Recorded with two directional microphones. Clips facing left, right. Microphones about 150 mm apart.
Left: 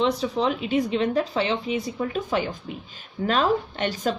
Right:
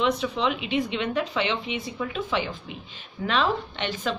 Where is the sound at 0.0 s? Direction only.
35° left (ahead or behind).